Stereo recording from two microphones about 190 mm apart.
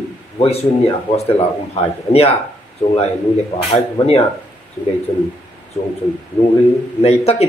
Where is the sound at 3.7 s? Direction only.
30° left (ahead or behind).